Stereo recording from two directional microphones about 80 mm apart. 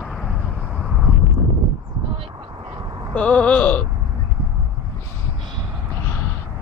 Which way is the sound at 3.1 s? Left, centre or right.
Centre.